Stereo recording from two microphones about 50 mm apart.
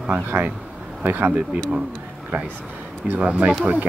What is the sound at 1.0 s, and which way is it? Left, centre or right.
Speech, right.